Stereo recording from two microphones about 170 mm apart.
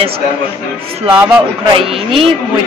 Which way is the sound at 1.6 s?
30° right (ahead or behind).